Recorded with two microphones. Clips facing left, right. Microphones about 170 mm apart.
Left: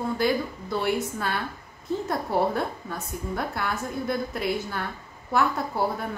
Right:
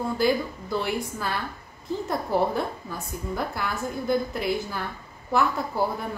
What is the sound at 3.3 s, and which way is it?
A woman's voice, centre (ahead or behind).